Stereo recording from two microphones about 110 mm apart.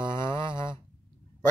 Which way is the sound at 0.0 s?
45° right (ahead or behind).